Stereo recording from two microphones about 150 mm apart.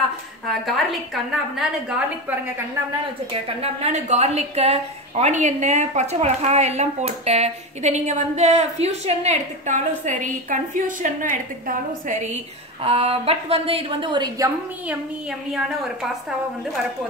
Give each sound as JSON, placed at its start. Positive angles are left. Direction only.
{"t": 0.5, "sound": "a woman's voice", "side_deg": 0}
{"t": 3.6, "sound": "a woman's voice", "side_deg": -50}
{"t": 12.8, "sound": "a woman's voice", "side_deg": -40}